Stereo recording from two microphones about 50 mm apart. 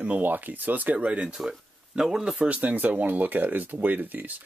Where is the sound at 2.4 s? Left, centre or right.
Right.